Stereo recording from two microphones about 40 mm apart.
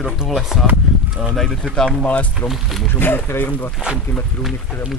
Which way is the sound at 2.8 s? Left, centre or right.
Left.